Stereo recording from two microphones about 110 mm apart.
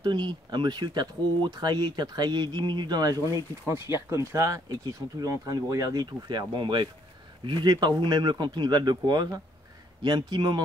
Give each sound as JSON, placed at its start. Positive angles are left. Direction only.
{"t": 0.0, "sound": "speech", "side_deg": -40}